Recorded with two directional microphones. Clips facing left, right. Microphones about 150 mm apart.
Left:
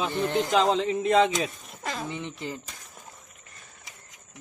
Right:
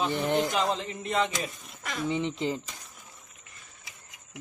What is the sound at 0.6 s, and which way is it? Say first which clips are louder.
Speech: left 6 dB; 90° left.